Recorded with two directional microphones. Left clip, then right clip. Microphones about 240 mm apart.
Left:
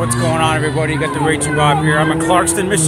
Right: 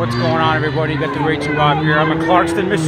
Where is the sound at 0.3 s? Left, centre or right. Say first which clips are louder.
Even; centre.